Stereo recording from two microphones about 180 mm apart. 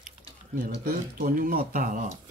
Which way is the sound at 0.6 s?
55° right (ahead or behind).